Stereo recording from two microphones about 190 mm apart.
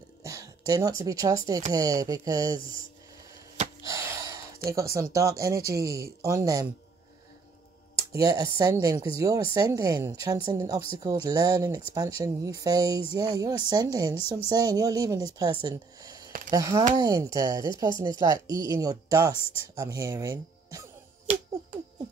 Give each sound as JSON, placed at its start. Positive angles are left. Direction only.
{"t": 0.2, "sound": "speech", "side_deg": -15}
{"t": 3.8, "sound": "gasp", "side_deg": -15}
{"t": 5.1, "sound": "speech", "side_deg": -15}
{"t": 8.1, "sound": "speech", "side_deg": -15}